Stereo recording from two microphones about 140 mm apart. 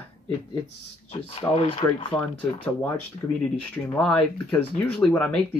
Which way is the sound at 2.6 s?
10° left (ahead or behind).